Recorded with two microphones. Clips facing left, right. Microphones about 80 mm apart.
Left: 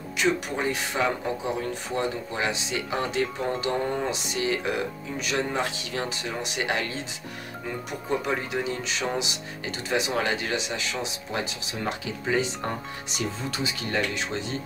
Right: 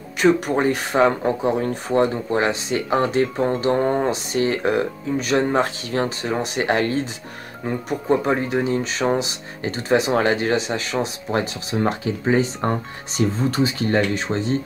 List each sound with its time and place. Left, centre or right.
0.2 s speech: right